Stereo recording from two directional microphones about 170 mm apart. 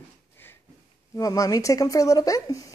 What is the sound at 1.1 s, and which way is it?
Speech, 20° left (ahead or behind).